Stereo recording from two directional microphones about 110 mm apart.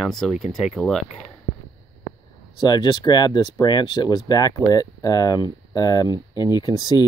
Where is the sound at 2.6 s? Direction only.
40° left (ahead or behind).